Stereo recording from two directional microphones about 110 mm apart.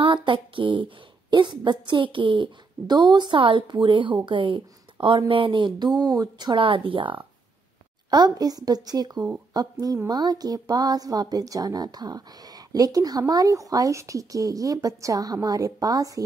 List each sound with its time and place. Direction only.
0.0 s speech: 50° right (ahead or behind)
5.9 s speech: 35° right (ahead or behind)
8.1 s speech: 35° right (ahead or behind)